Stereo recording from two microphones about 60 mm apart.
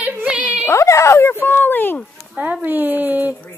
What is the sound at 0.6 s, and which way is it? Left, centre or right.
Speech, left.